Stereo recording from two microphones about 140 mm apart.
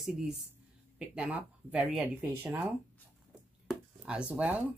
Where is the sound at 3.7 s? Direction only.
5° right (ahead or behind).